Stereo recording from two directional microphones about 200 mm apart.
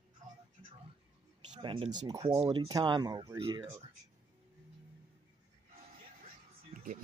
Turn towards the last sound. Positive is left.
turn(degrees=-40)  # may be behind; listen again after turning